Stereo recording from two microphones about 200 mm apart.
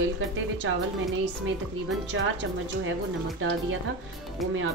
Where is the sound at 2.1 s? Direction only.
65° right (ahead or behind).